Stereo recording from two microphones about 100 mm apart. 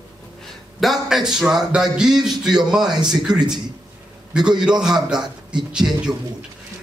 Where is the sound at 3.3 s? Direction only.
45° right (ahead or behind).